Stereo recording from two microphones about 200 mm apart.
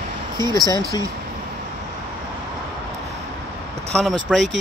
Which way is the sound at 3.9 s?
Centre (ahead or behind).